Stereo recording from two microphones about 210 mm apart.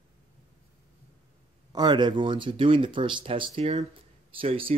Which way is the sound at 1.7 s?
20° right (ahead or behind).